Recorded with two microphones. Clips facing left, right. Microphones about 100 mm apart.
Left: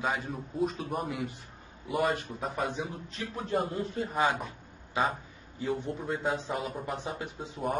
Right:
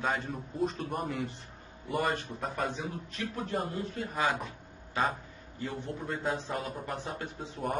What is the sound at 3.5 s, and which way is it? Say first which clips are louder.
Speech: left 7 dB; 25° left (ahead or behind).